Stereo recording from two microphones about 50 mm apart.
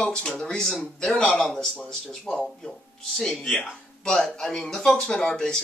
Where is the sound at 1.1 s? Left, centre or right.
Centre.